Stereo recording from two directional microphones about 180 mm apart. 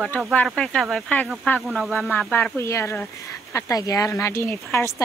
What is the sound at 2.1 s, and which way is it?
Speech, 10° left (ahead or behind).